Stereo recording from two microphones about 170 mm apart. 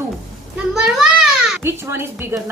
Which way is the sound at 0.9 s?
5° right (ahead or behind).